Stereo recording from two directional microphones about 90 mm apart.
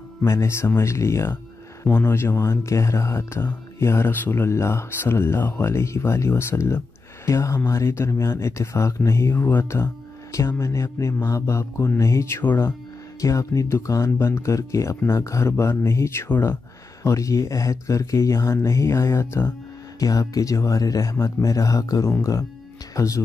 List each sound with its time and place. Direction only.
0.2 s speech: 30° left (ahead or behind)
13.2 s speech: 35° left (ahead or behind)
17.0 s speech: 35° left (ahead or behind)